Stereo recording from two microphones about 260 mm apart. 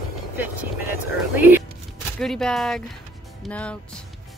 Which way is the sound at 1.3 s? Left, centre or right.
Centre.